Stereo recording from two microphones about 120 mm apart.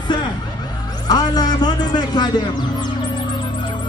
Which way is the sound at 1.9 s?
35° left (ahead or behind).